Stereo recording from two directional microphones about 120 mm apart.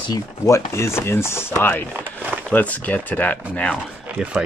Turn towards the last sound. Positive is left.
turn(degrees=-10)  # may be behind; listen again after turning